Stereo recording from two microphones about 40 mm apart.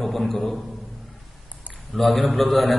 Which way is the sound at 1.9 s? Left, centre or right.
Centre.